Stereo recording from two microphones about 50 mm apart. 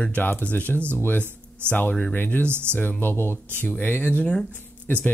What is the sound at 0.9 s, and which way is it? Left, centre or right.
Speech, left.